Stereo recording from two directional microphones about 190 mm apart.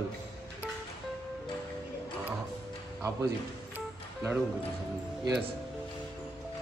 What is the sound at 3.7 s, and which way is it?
Music, 10° right (ahead or behind).